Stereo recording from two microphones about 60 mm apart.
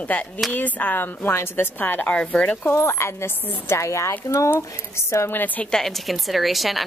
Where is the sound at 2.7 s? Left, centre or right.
Left.